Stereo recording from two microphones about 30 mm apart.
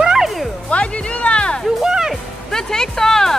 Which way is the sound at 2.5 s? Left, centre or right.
Centre.